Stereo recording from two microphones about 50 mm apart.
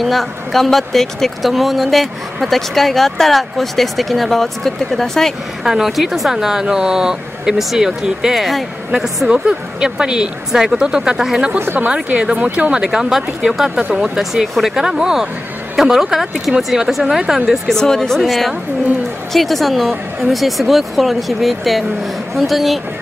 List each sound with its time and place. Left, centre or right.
0.0 s speech: centre
5.6 s speech: centre
8.4 s speech: centre
9.3 s speech: centre
11.9 s speech: centre
17.5 s speech: centre